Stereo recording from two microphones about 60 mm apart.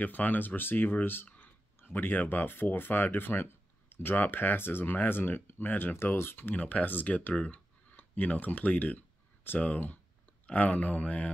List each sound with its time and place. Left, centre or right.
0.0 s speech: left